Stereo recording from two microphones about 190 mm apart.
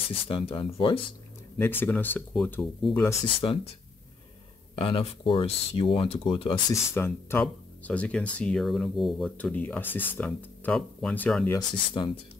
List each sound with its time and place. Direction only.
0.1 s speech: 30° left (ahead or behind)
1.6 s speech: 10° left (ahead or behind)
3.0 s speech: 15° left (ahead or behind)
4.7 s speech: 30° left (ahead or behind)
6.7 s speech: 10° left (ahead or behind)
11.5 s speech: 25° left (ahead or behind)